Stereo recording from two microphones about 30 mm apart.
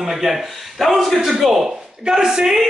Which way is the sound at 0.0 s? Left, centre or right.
Centre.